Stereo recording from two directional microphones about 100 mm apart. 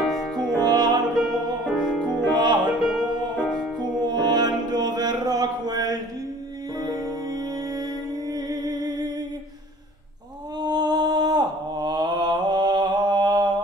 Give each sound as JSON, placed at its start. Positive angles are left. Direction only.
{"t": 0.0, "sound": "music", "side_deg": 0}
{"t": 0.6, "sound": "music", "side_deg": -45}
{"t": 1.1, "sound": "music", "side_deg": -5}
{"t": 2.1, "sound": "music", "side_deg": -45}
{"t": 3.7, "sound": "music", "side_deg": -45}
{"t": 10.6, "sound": "mantra", "side_deg": -45}